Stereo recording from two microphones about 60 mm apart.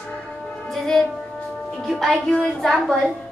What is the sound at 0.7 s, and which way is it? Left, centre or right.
A woman's voice, centre.